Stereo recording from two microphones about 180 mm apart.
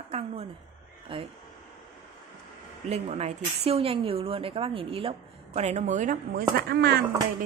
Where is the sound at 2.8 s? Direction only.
35° right (ahead or behind); by 7.0 s 65° right (ahead or behind).